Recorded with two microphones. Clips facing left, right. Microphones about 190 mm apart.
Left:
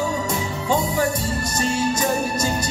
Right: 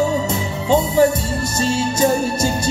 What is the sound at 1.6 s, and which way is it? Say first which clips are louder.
Music: right 5 dB; 25° right (ahead or behind).